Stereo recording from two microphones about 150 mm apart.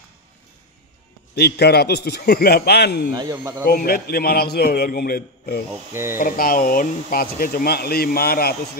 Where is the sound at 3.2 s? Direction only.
25° right (ahead or behind).